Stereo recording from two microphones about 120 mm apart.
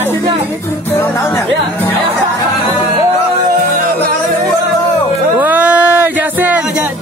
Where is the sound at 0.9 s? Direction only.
20° left (ahead or behind).